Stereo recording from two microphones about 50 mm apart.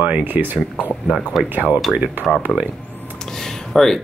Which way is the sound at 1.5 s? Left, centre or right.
Right.